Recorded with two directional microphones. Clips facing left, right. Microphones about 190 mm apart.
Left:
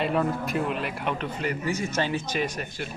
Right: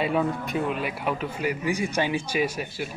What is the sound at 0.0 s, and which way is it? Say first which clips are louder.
A man's voice: right 1 dB; centre (ahead or behind).